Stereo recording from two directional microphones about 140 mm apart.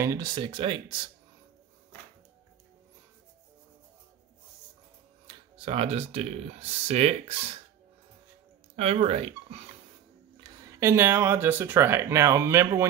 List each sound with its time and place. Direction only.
0.0 s speech: 25° right (ahead or behind)
5.2 s speech: 40° right (ahead or behind)
8.7 s speech: 50° right (ahead or behind)
10.4 s speech: 20° right (ahead or behind)